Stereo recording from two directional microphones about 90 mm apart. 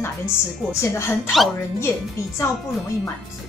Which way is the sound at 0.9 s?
30° left (ahead or behind).